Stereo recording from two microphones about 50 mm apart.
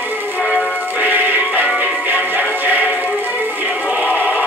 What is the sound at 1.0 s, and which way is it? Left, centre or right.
Music, right.